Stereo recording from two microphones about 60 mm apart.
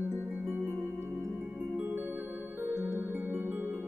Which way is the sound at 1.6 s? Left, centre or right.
Right.